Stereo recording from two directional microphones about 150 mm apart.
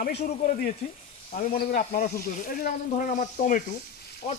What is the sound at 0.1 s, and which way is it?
Speech, 55° left (ahead or behind).